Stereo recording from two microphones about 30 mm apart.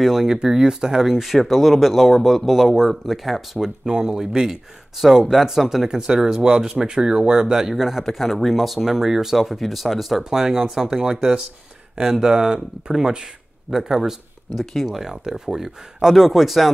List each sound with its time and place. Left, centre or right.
0.0 s speech: centre
1.2 s speech: centre
3.5 s speech: right
5.9 s speech: right
8.0 s speech: centre
8.8 s speech: centre
10.4 s speech: centre
12.0 s speech: right; by 16.7 s centre